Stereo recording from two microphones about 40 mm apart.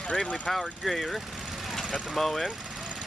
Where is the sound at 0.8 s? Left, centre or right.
Centre.